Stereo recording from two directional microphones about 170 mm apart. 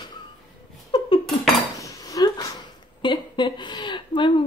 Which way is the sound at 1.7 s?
20° left (ahead or behind).